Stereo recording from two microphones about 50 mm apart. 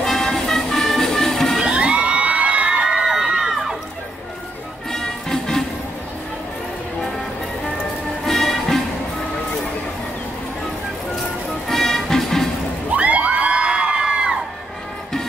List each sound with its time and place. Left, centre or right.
0.0 s music: centre
1.6 s crowd: centre
4.9 s music: centre
8.3 s music: centre
11.6 s music: centre
12.9 s crowd: right